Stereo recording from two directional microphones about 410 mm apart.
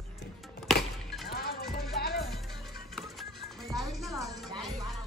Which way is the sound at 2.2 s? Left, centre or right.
Centre.